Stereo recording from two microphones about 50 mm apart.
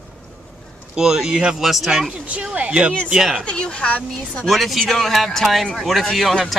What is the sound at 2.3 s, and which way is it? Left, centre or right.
Speech, right.